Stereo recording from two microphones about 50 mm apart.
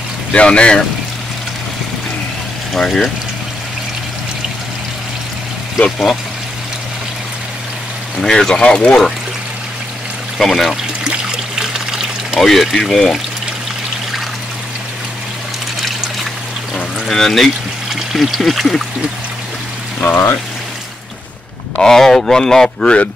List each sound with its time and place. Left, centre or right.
0.3 s speech: left
2.7 s speech: centre
5.9 s speech: centre
8.2 s speech: centre
10.4 s speech: centre
11.2 s trickle: centre
12.4 s speech: centre
16.7 s pour: centre
17.9 s speech: centre
20.0 s speech: left
21.7 s speech: centre